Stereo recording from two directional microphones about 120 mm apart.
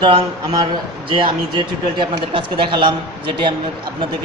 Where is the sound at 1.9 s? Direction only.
45° right (ahead or behind).